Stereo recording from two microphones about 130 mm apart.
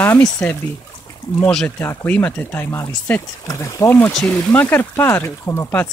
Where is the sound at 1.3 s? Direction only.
10° left (ahead or behind).